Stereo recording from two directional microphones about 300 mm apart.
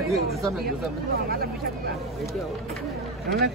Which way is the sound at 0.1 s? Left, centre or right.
Centre.